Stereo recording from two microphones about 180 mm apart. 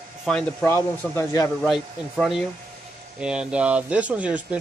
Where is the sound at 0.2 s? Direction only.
5° left (ahead or behind).